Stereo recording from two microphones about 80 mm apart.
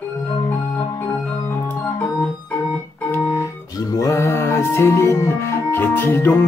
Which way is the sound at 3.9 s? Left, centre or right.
Left.